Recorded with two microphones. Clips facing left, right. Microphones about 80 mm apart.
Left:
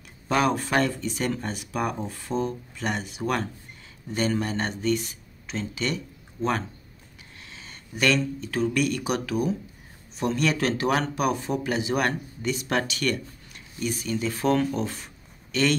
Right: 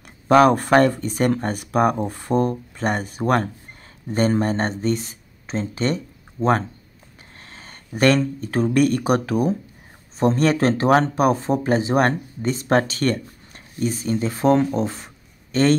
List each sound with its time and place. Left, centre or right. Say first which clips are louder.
0.3 s speech: right 9 dB; right